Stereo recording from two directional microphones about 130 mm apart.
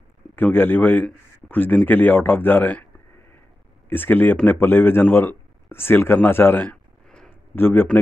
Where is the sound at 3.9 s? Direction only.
15° left (ahead or behind).